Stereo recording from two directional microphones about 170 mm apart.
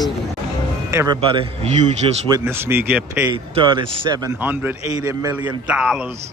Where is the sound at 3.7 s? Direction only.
25° right (ahead or behind).